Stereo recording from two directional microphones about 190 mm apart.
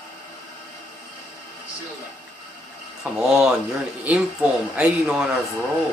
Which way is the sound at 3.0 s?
5° right (ahead or behind).